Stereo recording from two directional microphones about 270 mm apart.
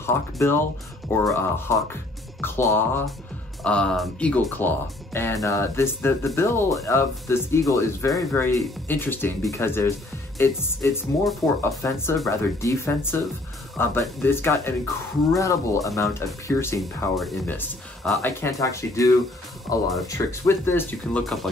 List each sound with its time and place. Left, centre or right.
0.0 s speech: centre
16.8 s speech: centre